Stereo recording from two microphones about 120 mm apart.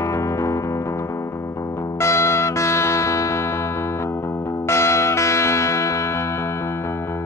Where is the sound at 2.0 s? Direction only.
25° left (ahead or behind).